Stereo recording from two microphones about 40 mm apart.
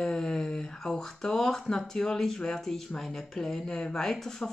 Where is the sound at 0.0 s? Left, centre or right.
Centre.